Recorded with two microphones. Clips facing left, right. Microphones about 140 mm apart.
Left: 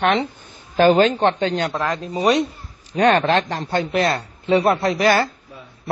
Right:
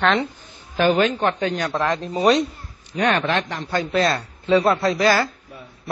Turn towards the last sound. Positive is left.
turn(degrees=25)  # may be behind; listen again after turning